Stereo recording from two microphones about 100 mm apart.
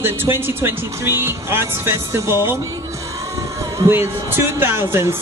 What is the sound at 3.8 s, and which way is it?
Speech, 25° right (ahead or behind).